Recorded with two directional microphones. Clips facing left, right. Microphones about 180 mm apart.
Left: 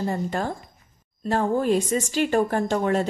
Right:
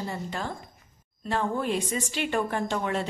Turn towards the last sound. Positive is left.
turn(degrees=40)  # may be behind; listen again after turning